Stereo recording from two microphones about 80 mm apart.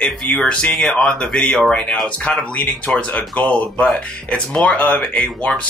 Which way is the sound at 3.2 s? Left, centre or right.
Centre.